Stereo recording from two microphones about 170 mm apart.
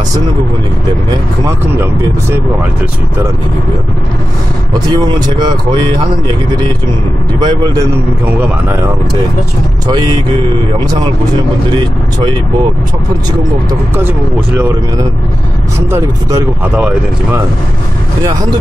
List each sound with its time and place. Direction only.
4.7 s speech: 25° right (ahead or behind)
7.3 s speech: 25° right (ahead or behind)
9.8 s speech: 25° right (ahead or behind)
13.7 s speech: 15° right (ahead or behind)
15.9 s speech: 15° right (ahead or behind)